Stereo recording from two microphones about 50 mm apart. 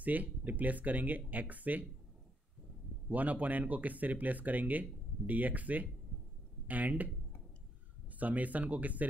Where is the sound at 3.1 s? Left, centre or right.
Right.